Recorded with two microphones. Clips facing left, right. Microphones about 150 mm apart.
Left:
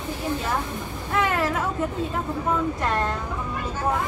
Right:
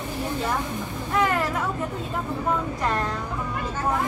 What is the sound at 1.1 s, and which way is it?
Vehicle, centre (ahead or behind).